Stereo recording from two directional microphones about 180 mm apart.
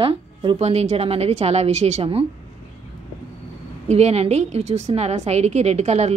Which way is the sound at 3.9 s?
35° right (ahead or behind).